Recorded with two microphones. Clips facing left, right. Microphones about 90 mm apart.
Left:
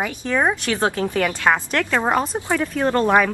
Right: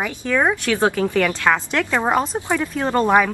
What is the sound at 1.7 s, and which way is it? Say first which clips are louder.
Speech: right 1 dB; 10° right (ahead or behind).